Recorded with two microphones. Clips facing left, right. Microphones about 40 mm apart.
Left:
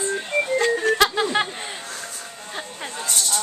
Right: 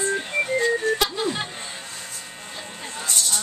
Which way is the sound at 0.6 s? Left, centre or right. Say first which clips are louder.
Left 5 dB; left.